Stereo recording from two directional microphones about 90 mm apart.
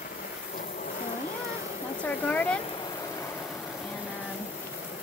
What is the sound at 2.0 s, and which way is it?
Speech, 15° left (ahead or behind).